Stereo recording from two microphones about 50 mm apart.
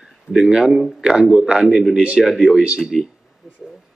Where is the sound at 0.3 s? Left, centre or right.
Centre.